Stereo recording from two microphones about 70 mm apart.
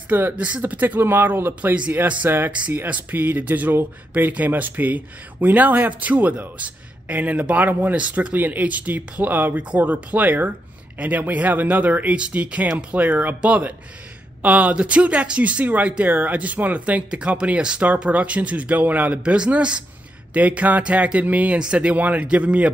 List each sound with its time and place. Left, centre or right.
0.1 s speech: right